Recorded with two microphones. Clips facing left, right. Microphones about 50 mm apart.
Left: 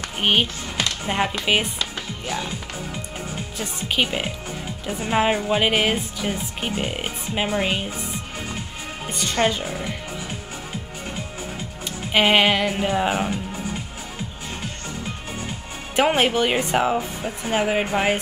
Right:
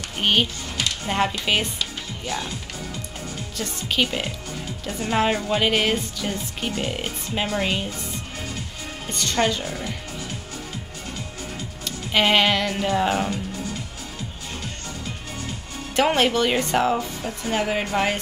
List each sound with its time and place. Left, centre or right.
0.2 s speech: centre
9.0 s a woman's voice: centre
12.1 s speech: centre
16.0 s speech: centre